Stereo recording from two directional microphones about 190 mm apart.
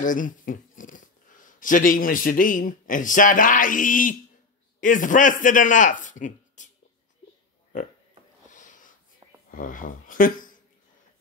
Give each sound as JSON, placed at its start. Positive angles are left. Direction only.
{"t": 0.0, "sound": "speech", "side_deg": 45}
{"t": 8.5, "sound": "a sound", "side_deg": 40}
{"t": 9.5, "sound": "speech", "side_deg": 45}